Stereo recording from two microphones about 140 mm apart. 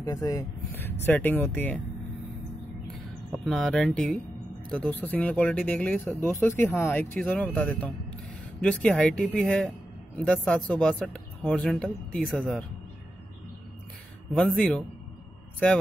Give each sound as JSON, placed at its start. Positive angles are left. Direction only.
{"t": 0.0, "sound": "speech", "side_deg": 25}
{"t": 0.7, "sound": "speech", "side_deg": 15}
{"t": 3.4, "sound": "speech", "side_deg": 5}
{"t": 14.3, "sound": "speech", "side_deg": 5}